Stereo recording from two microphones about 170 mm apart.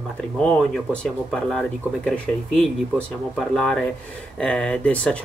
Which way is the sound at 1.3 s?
5° left (ahead or behind).